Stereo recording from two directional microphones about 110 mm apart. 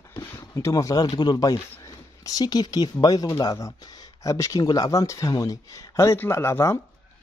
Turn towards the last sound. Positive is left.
turn(degrees=25)  # may be behind; listen again after turning